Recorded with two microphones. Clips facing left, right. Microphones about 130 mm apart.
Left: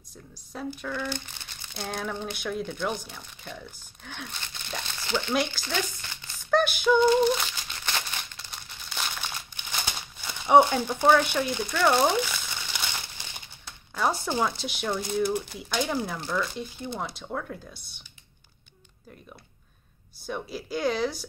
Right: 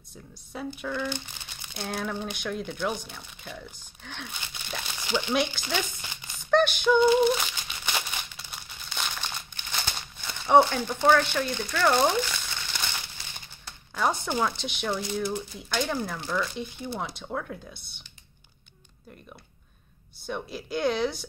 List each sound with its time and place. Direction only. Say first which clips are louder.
0.5 s speech: even; centre (ahead or behind)
1.7 s rattle: right 1 dB; 5° right (ahead or behind)
2.4 s speech: left 1 dB; centre (ahead or behind)
5.0 s speech: right 1 dB; 15° right (ahead or behind)
5.3 s speech: right 1 dB; centre (ahead or behind)
5.6 s speech: even; 15° right (ahead or behind)
6.5 s crumpling: right 1 dB; 5° left (ahead or behind)
9.9 s speech: even; 5° left (ahead or behind)
13.9 s speech: even; centre (ahead or behind)
20.2 s speech: even; centre (ahead or behind)